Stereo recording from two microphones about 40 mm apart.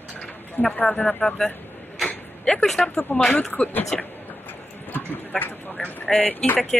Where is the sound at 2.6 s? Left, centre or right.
Centre.